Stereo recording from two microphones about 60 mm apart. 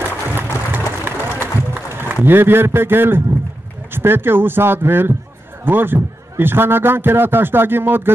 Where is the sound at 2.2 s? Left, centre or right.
Right.